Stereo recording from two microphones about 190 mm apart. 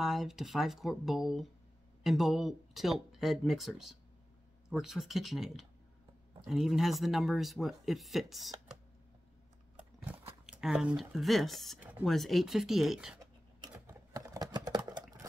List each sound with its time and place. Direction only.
0.0 s speech: centre (ahead or behind)
10.1 s biting: 5° right (ahead or behind)
10.4 s speech: 5° right (ahead or behind)
13.2 s typing: 20° right (ahead or behind)
14.9 s a sound: 20° right (ahead or behind)